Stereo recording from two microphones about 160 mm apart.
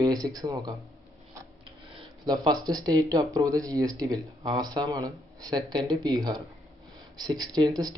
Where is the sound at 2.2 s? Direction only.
25° right (ahead or behind).